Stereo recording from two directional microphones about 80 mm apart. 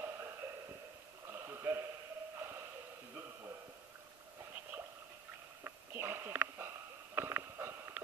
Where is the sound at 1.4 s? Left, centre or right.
Right.